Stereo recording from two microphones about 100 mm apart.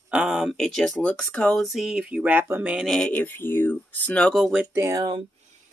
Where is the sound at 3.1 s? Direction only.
20° left (ahead or behind).